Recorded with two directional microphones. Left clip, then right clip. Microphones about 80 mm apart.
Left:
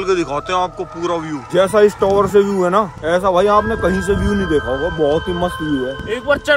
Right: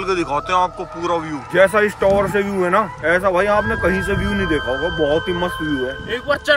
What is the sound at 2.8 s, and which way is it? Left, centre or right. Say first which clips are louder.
Speech: left 1 dB; left.